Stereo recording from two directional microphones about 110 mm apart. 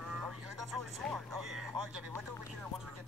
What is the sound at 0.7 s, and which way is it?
Speech, centre (ahead or behind).